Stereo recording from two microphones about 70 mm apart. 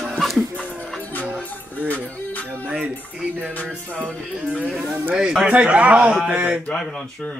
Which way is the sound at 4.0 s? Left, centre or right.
Centre.